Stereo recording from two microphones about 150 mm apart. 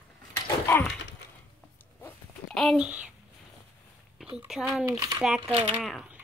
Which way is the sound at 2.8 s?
10° right (ahead or behind).